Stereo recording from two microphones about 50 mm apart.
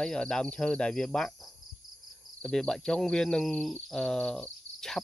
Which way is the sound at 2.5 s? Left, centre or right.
Centre.